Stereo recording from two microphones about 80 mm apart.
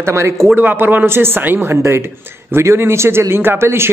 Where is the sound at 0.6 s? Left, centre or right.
Right.